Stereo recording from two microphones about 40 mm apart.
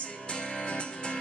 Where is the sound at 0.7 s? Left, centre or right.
Left.